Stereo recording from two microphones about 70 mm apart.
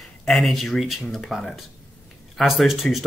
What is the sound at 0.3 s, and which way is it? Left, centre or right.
Speech, centre.